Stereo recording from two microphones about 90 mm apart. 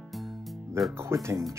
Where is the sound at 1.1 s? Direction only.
30° right (ahead or behind).